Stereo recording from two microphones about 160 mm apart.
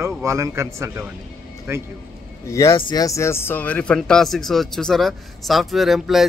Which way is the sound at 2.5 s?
20° left (ahead or behind).